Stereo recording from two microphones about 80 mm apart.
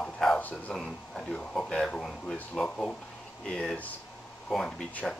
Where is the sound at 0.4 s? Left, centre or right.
Left.